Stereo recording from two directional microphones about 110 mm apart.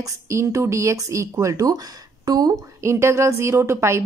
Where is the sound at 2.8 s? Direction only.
25° right (ahead or behind).